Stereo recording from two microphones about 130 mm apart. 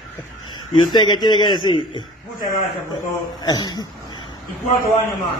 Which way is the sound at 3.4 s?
30° left (ahead or behind).